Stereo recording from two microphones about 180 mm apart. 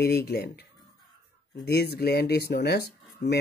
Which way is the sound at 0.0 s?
60° left (ahead or behind).